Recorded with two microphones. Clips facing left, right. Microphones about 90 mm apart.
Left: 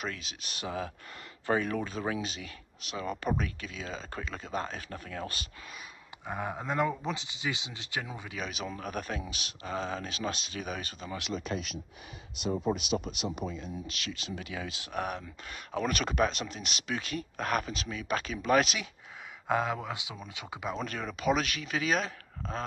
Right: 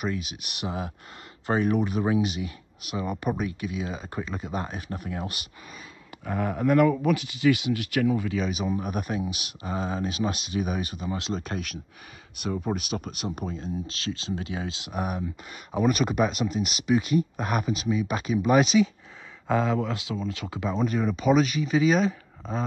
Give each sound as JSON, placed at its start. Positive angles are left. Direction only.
{"t": 0.0, "sound": "speech", "side_deg": -10}
{"t": 6.2, "sound": "speech", "side_deg": 15}
{"t": 8.4, "sound": "speech", "side_deg": -5}
{"t": 8.6, "sound": "speech", "side_deg": -15}
{"t": 11.1, "sound": "speech", "side_deg": -30}
{"t": 11.4, "sound": "speech", "side_deg": -50}
{"t": 14.9, "sound": "speech", "side_deg": -10}
{"t": 19.4, "sound": "speech", "side_deg": 10}
{"t": 20.7, "sound": "speech", "side_deg": -5}